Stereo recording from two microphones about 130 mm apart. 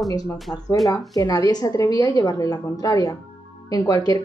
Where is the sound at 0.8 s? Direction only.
25° left (ahead or behind).